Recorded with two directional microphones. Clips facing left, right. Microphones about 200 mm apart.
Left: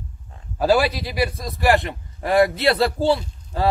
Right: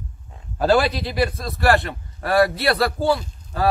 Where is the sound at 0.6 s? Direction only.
10° left (ahead or behind).